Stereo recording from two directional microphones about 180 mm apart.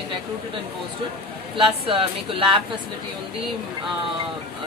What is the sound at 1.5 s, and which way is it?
Speech, 30° right (ahead or behind).